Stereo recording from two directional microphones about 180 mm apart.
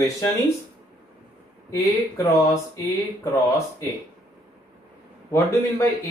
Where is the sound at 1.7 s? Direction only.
15° left (ahead or behind).